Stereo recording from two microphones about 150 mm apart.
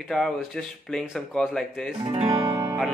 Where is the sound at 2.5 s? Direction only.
10° right (ahead or behind).